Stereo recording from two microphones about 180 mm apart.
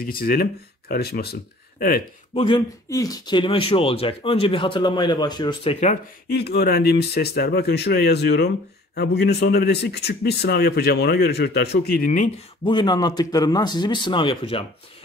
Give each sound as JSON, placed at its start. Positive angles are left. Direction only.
{"t": 0.0, "sound": "a man's voice", "side_deg": 55}
{"t": 2.3, "sound": "speech", "side_deg": 25}
{"t": 6.3, "sound": "a man's voice", "side_deg": 60}
{"t": 12.6, "sound": "speech", "side_deg": 25}